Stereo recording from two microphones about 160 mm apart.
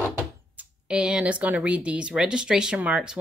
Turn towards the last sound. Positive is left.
turn(degrees=-5)  # may be behind; listen again after turning